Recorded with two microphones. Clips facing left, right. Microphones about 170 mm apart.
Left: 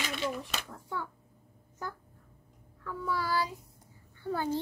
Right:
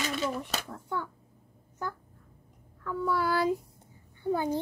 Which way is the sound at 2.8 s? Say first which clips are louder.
Right 5 dB; 55° right (ahead or behind).